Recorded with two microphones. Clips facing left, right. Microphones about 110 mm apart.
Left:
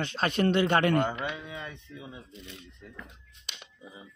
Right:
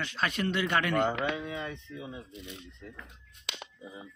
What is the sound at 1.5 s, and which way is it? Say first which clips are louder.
Speech: right 3 dB; 5° left (ahead or behind).